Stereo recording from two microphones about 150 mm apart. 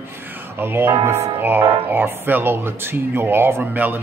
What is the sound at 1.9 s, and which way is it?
Speech, 15° right (ahead or behind).